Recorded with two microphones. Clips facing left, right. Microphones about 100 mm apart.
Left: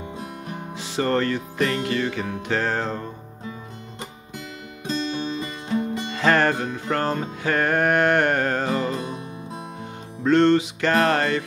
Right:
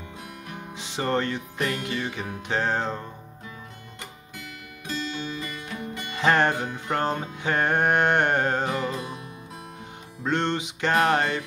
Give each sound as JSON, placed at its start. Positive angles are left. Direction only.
{"t": 0.7, "sound": "music", "side_deg": -20}
{"t": 4.8, "sound": "music", "side_deg": 25}
{"t": 6.1, "sound": "music", "side_deg": -20}
{"t": 8.9, "sound": "music", "side_deg": 25}
{"t": 10.2, "sound": "music", "side_deg": -20}